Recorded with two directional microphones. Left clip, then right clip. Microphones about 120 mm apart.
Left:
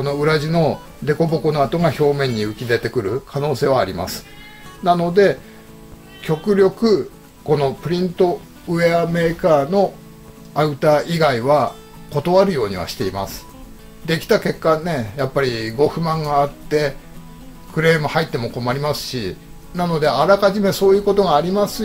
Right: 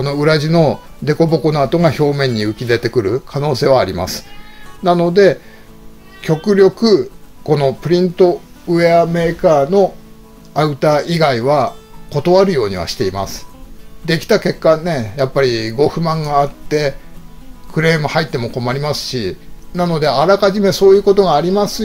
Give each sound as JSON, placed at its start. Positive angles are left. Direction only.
{"t": 0.0, "sound": "speech", "side_deg": -90}
{"t": 7.4, "sound": "speech", "side_deg": -90}
{"t": 8.6, "sound": "a man's voice", "side_deg": -50}